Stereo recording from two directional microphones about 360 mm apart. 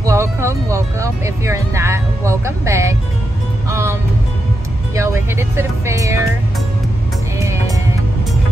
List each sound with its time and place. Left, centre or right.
0.0 s speech: centre
3.6 s music: centre
4.9 s music: centre
7.3 s music: centre